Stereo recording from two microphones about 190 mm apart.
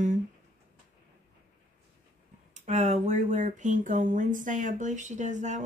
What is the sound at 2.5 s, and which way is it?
Speech, 40° right (ahead or behind).